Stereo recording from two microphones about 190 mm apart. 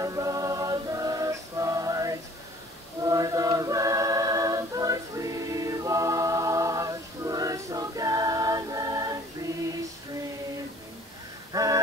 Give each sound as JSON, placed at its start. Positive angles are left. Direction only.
{"t": 0.0, "sound": "music", "side_deg": -15}
{"t": 3.0, "sound": "a capella", "side_deg": -20}
{"t": 11.5, "sound": "a sound", "side_deg": -20}